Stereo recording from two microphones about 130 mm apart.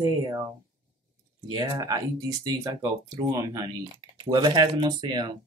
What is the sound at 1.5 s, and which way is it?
Speech, 30° right (ahead or behind).